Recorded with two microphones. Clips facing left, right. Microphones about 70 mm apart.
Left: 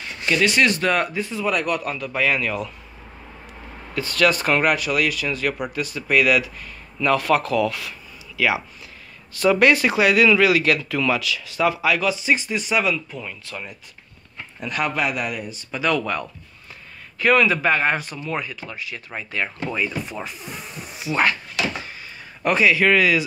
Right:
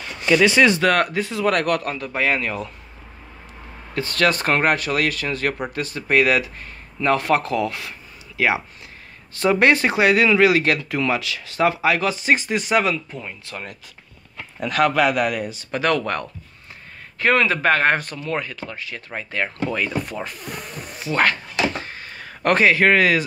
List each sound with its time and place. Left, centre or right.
1.1 s speech: right
1.9 s speech: right
3.9 s speech: right
13.1 s speech: right
14.6 s a man's voice: right
17.2 s a man's voice: right
19.7 s a man's voice: right
20.4 s a sound: right
22.2 s speech: right